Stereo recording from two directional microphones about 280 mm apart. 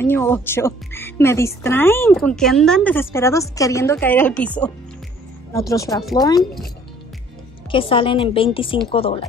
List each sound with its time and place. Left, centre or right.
0.0 s a woman's voice: centre
7.7 s a woman's voice: centre